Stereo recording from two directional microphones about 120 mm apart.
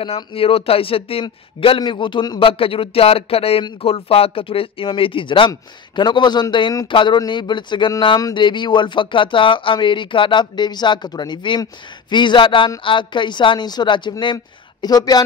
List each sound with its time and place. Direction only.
0.0 s speech: 50° left (ahead or behind); by 15.2 s 35° left (ahead or behind)